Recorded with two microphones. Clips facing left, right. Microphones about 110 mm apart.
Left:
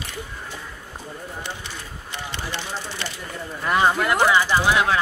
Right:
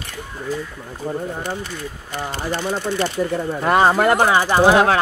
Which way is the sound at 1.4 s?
45° right (ahead or behind).